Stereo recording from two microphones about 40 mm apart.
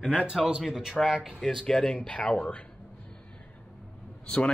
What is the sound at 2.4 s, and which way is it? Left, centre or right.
Speech, left.